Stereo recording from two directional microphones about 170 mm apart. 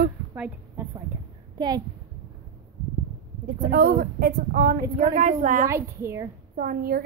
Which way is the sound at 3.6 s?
60° right (ahead or behind).